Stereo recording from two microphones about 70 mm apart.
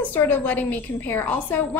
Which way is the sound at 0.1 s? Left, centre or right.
Left.